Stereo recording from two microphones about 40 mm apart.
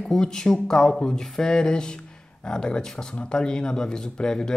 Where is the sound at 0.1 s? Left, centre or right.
Centre.